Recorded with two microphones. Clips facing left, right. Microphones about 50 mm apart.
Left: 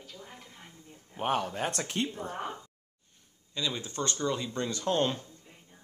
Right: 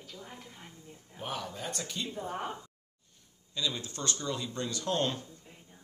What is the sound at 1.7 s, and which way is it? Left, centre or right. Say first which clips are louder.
Speech: left 5 dB; left.